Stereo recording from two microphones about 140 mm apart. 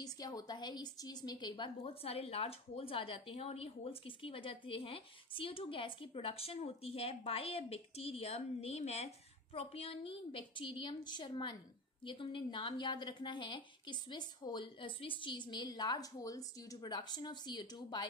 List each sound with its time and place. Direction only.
0.0 s a woman's voice: 25° left (ahead or behind)